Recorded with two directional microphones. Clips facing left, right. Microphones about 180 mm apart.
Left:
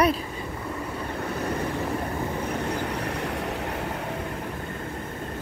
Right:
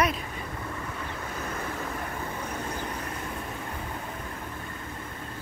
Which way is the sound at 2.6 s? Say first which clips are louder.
Left 6 dB; 75° left (ahead or behind).